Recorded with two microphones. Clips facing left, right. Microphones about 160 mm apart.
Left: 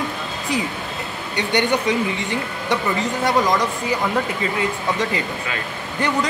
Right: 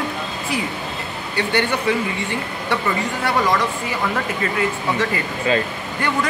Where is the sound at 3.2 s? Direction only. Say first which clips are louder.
Left 1 dB; 20° left (ahead or behind).